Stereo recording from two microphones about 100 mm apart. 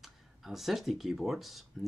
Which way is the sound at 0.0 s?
Centre (ahead or behind).